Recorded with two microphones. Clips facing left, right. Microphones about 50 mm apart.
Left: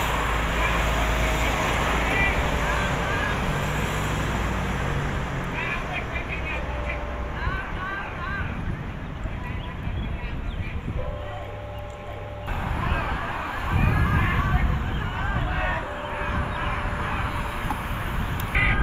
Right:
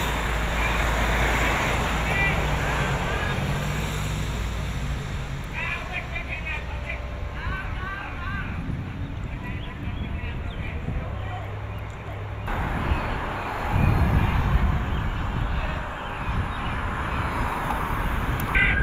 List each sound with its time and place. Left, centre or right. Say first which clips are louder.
0.0 s vehicle: left 2 dB; left
12.4 s vehicle: right 2 dB; right
12.8 s vehicle: left 1 dB; left
13.7 s music: left 1 dB; left
15.1 s a sound: left 3 dB; left
16.2 s vehicle: left 4 dB; left
17.2 s vehicle: right 2 dB; right